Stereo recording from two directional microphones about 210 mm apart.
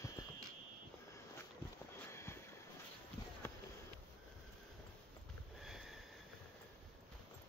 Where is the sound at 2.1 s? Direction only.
10° left (ahead or behind).